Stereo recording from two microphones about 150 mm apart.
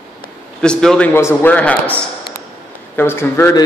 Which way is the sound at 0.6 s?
5° left (ahead or behind).